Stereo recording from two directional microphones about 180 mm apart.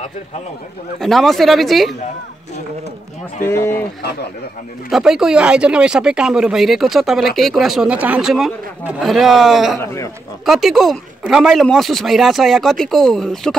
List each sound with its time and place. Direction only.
0.9 s speech: centre (ahead or behind)
3.4 s speech: 15° left (ahead or behind)
4.9 s speech: centre (ahead or behind)
9.8 s speech: 15° left (ahead or behind)
10.4 s speech: centre (ahead or behind)